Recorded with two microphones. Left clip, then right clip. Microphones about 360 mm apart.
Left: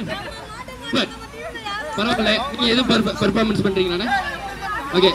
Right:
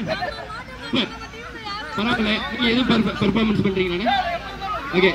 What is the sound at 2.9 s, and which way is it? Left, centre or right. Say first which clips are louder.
A man's voice: left 2 dB; left.